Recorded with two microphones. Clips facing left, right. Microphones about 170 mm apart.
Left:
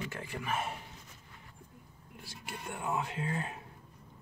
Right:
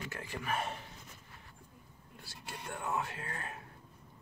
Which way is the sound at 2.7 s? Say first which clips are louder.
Left 2 dB; 15° left (ahead or behind).